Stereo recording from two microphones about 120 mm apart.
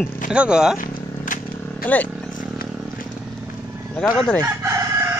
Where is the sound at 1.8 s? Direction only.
15° left (ahead or behind).